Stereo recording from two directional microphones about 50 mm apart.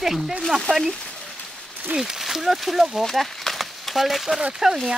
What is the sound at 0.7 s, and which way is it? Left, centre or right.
Speech, centre.